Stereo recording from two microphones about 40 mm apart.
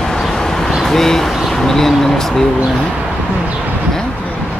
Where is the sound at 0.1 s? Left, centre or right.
Centre.